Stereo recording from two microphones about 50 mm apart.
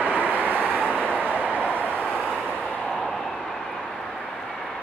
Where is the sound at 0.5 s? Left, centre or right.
Left.